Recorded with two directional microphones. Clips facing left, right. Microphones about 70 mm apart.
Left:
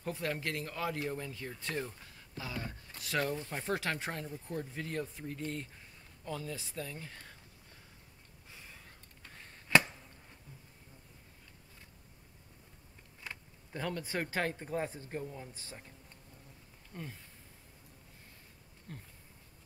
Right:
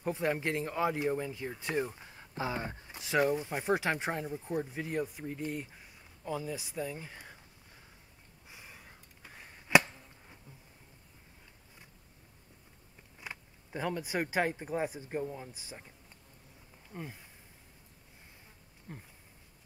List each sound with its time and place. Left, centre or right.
0.0 s speech: centre
8.5 s a sound: centre
13.2 s speech: centre
16.9 s speech: centre
18.9 s speech: centre